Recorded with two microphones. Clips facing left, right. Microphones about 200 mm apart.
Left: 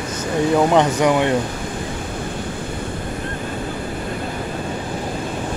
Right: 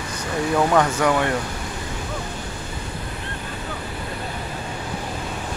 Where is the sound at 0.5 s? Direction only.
20° left (ahead or behind).